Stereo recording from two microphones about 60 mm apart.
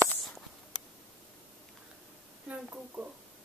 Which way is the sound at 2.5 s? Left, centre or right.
Right.